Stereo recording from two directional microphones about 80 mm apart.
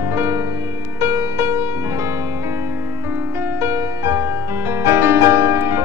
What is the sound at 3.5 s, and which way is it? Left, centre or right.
Music, right.